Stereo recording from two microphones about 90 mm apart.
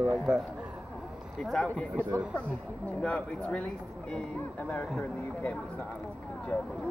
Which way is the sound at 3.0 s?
15° left (ahead or behind).